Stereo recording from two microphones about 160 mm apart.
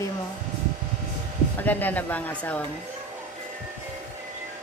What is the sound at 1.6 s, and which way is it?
Speech, 10° left (ahead or behind).